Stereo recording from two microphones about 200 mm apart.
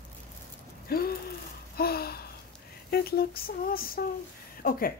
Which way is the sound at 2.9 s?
50° left (ahead or behind).